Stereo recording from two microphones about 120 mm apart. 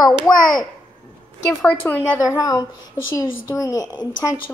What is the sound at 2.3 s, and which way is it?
Speech, 30° left (ahead or behind).